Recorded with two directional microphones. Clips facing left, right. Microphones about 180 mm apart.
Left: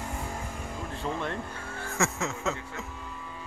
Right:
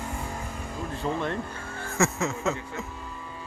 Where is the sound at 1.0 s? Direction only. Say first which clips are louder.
Right 4 dB; centre (ahead or behind).